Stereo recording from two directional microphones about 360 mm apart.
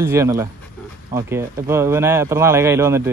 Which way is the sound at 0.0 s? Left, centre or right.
Centre.